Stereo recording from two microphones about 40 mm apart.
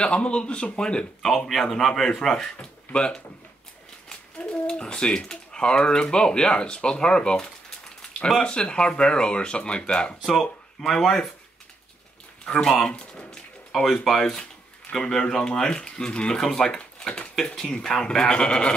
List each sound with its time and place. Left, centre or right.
0.0 s speech: left
1.5 s a man's voice: centre
2.6 s a sound: left
4.5 s speech: left
10.2 s speech: centre
12.5 s speech: centre
12.8 s a sound: left
13.7 s a sound: centre
14.9 s speech: centre
16.3 s a man's voice: centre